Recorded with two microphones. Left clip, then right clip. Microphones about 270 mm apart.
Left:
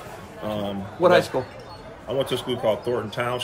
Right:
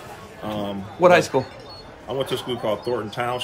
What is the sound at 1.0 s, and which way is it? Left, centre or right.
Speech, right.